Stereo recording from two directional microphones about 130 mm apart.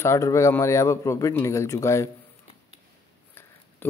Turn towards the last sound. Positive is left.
turn(degrees=15)  # may be behind; listen again after turning